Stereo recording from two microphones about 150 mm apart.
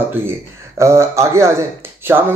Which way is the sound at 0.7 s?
20° right (ahead or behind).